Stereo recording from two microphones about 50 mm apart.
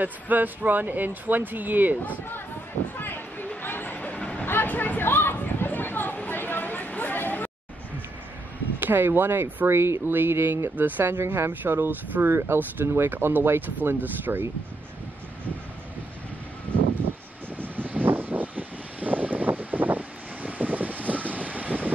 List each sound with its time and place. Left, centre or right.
0.0 s speech: right
2.0 s speech: left
3.0 s a sound: left
4.5 s chatter: left
8.8 s speech: right
11.1 s speech: right
13.1 s speech: right
17.6 s vehicle: right